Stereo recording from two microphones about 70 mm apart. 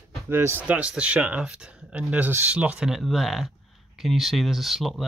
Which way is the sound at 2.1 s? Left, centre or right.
Right.